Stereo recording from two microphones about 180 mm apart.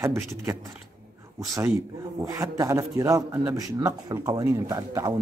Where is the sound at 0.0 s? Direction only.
15° right (ahead or behind).